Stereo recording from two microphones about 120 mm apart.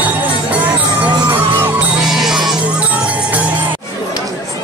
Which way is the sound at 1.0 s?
15° right (ahead or behind).